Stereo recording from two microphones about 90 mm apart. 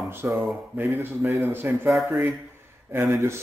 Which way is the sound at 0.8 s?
25° right (ahead or behind).